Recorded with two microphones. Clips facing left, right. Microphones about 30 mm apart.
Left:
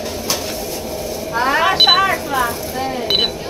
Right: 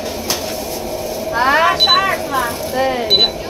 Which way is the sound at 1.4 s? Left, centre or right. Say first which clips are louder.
Right 1 dB; centre.